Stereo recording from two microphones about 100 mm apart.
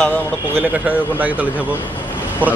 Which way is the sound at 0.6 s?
15° right (ahead or behind).